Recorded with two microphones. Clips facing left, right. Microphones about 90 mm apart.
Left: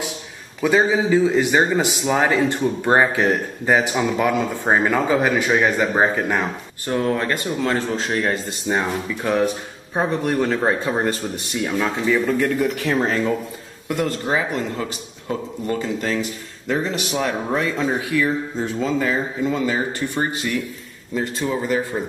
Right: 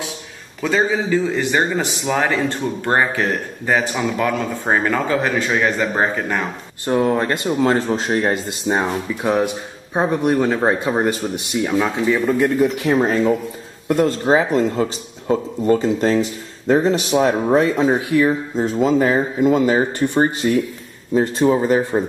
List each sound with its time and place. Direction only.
0.6 s a man's voice: 10° left (ahead or behind)
6.9 s a man's voice: 20° right (ahead or behind)